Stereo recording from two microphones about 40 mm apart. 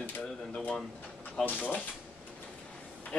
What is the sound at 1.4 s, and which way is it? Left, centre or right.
Speech, left.